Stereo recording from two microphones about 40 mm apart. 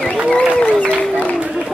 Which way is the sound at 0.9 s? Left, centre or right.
Left.